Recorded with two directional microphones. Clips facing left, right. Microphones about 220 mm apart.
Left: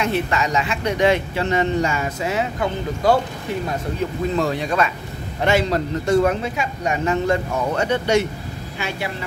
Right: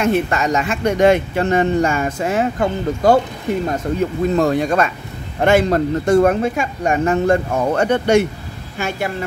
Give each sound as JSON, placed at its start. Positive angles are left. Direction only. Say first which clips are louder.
{"t": 0.0, "sound": "speech", "louder": "right 4 dB", "side_deg": -50}
{"t": 4.4, "sound": "speech", "louder": "right 5 dB", "side_deg": -45}